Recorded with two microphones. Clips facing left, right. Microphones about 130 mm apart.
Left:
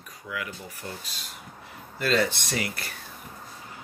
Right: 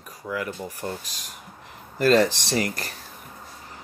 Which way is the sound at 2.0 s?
40° right (ahead or behind).